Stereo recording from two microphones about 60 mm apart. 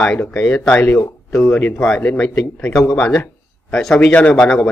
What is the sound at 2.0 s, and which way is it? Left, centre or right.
A man's voice, left.